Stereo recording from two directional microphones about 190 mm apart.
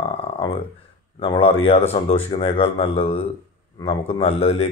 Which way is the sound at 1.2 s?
30° left (ahead or behind).